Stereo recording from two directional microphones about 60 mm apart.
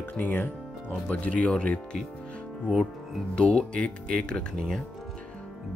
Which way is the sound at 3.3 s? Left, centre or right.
Centre.